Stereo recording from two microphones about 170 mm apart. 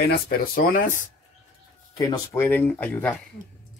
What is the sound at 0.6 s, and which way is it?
Speech, 55° left (ahead or behind).